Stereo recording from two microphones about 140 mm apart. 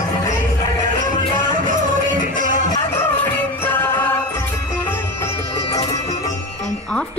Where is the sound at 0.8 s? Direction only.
70° right (ahead or behind).